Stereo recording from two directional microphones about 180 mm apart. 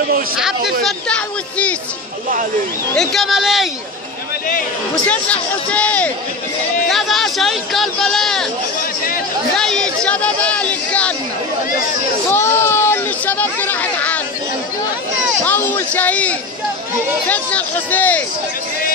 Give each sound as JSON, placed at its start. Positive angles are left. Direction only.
{"t": 0.8, "sound": "speech", "side_deg": 5}
{"t": 2.9, "sound": "speech", "side_deg": 0}
{"t": 5.0, "sound": "speech", "side_deg": 5}
{"t": 9.6, "sound": "a sound", "side_deg": 5}
{"t": 12.3, "sound": "a sound", "side_deg": 15}
{"t": 15.4, "sound": "speech", "side_deg": 10}